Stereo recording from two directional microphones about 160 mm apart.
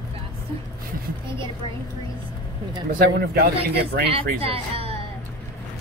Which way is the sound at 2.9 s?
70° right (ahead or behind).